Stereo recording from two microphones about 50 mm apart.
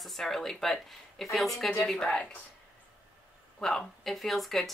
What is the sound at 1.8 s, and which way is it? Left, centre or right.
Speech, centre.